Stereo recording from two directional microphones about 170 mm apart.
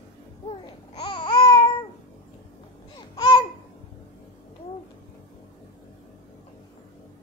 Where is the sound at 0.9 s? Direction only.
30° left (ahead or behind).